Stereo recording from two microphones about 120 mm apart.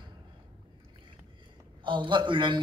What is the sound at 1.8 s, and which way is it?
Speech, 40° right (ahead or behind).